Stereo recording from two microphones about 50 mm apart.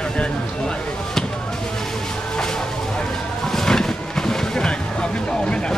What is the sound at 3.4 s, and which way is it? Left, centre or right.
Vehicle, centre.